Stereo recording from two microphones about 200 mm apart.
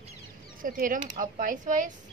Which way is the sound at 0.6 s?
45° right (ahead or behind).